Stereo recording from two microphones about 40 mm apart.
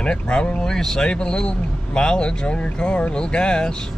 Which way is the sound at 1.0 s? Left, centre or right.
Left.